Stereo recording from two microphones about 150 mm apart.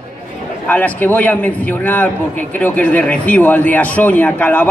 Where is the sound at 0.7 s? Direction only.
10° left (ahead or behind).